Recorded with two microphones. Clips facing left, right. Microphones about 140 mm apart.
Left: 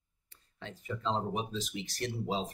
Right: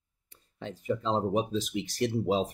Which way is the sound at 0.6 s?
20° right (ahead or behind).